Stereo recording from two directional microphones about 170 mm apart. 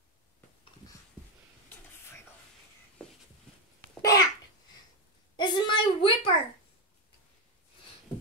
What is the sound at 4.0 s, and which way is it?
Babbling, 20° left (ahead or behind).